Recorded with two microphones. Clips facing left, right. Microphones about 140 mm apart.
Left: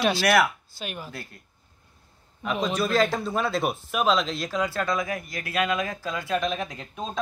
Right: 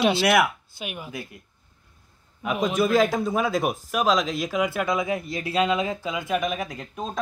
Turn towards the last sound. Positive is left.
turn(degrees=-5)  # may be behind; listen again after turning